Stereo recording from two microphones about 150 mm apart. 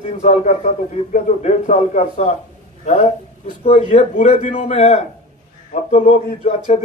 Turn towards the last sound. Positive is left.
turn(degrees=45)  # may be behind; listen again after turning